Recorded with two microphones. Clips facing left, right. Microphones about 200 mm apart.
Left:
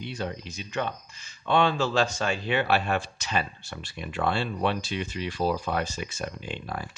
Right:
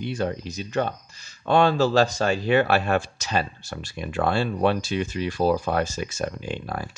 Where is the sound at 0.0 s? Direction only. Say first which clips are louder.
Right 6 dB; 50° right (ahead or behind).